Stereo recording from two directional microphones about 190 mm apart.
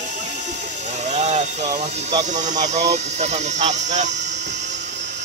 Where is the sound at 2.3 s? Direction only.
40° right (ahead or behind).